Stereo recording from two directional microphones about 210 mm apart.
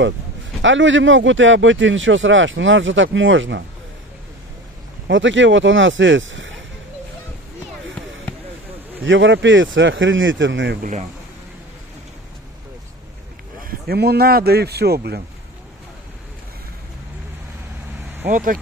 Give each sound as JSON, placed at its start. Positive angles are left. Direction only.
{"t": 0.6, "sound": "speech", "side_deg": -65}
{"t": 5.0, "sound": "speech", "side_deg": -65}
{"t": 9.0, "sound": "speech", "side_deg": -60}
{"t": 10.8, "sound": "speech", "side_deg": -35}
{"t": 13.6, "sound": "speech", "side_deg": -45}
{"t": 18.3, "sound": "speech", "side_deg": -40}